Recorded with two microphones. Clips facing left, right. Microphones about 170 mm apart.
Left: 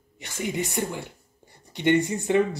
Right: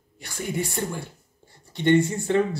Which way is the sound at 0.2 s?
20° left (ahead or behind).